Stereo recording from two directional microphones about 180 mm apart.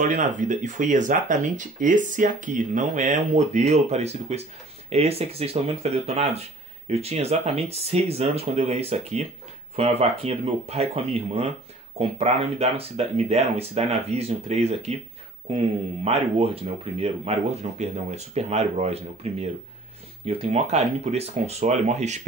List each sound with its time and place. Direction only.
0.0 s speech: 45° right (ahead or behind)